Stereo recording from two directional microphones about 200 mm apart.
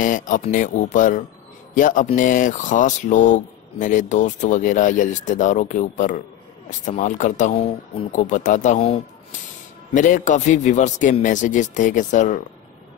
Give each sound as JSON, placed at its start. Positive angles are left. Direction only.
{"t": 0.0, "sound": "speech", "side_deg": 40}